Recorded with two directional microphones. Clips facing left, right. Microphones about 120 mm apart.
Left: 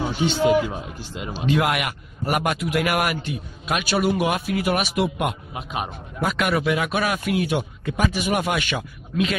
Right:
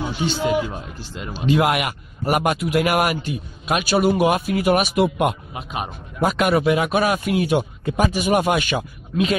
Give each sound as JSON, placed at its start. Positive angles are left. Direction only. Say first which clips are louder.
{"t": 0.2, "sound": "a man's voice", "louder": "left 2 dB", "side_deg": 20}
{"t": 1.5, "sound": "speech", "louder": "right 3 dB", "side_deg": -15}
{"t": 2.5, "sound": "a man's voice", "louder": "right 3 dB", "side_deg": -35}
{"t": 5.5, "sound": "a man's voice", "louder": "even", "side_deg": 0}
{"t": 6.2, "sound": "a man's voice", "louder": "right 4 dB", "side_deg": -35}